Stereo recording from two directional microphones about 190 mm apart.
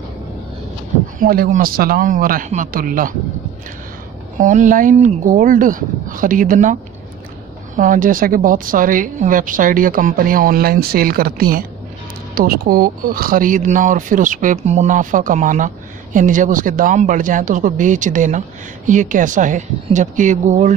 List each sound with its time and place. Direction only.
1.2 s speech: 50° right (ahead or behind)
4.4 s speech: 40° right (ahead or behind)